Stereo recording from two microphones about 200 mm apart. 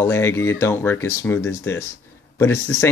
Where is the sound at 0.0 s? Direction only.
15° left (ahead or behind).